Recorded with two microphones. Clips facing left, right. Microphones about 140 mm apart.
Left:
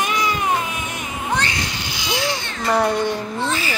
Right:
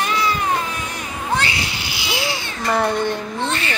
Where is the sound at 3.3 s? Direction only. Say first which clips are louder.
Even; 5° left (ahead or behind).